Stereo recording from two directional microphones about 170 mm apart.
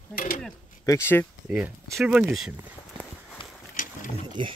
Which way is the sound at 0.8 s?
15° left (ahead or behind).